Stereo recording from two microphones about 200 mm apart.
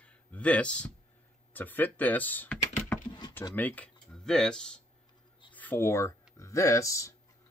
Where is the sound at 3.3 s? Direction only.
10° left (ahead or behind).